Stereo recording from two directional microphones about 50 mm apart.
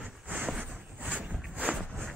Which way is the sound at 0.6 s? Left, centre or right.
Right.